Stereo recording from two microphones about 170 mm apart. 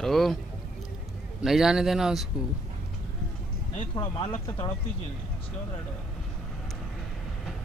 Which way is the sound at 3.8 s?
30° left (ahead or behind).